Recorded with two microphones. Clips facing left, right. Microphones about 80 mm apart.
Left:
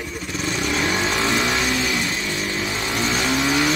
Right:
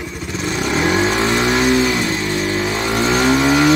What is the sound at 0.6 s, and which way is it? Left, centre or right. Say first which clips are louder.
Vehicle: right 6 dB; right.